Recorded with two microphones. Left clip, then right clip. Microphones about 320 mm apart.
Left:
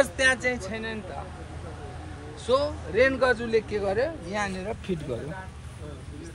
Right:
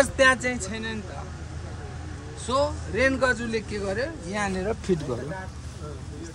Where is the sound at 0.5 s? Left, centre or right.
Centre.